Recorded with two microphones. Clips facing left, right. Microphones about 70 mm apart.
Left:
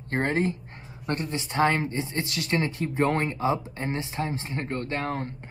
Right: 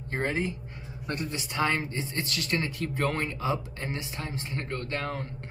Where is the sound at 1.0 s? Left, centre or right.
Left.